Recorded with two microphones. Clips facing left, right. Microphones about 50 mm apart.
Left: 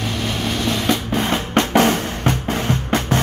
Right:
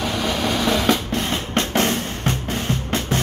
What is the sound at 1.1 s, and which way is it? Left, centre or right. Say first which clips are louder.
Drum: left 4 dB; left.